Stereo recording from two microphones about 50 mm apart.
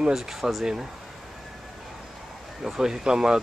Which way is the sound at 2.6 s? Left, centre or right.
Centre.